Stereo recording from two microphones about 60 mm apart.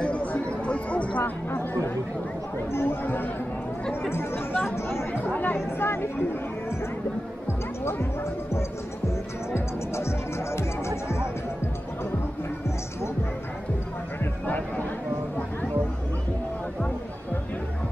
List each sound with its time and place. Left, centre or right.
0.0 s a sound: left
1.2 s speech: left
5.2 s speech: left
7.8 s speech: left
9.5 s music: left
14.2 s a sound: left